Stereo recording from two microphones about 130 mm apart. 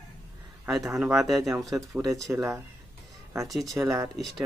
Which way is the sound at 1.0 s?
Centre (ahead or behind).